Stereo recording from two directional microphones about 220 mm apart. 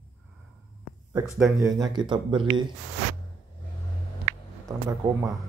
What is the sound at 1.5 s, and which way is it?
Speech, 15° right (ahead or behind).